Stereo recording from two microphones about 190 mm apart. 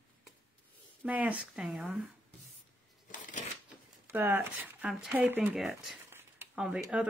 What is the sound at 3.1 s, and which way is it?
Shuffling cards, 45° left (ahead or behind).